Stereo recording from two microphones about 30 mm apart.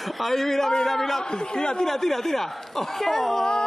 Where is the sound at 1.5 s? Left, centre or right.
Left.